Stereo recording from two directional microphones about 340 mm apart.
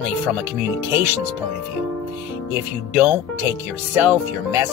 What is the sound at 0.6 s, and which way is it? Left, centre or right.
Speech, centre.